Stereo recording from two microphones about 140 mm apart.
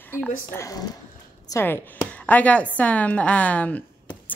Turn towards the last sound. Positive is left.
turn(degrees=10)  # may be behind; listen again after turning